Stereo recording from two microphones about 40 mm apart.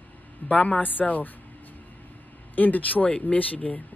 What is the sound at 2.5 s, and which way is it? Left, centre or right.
Speech, left.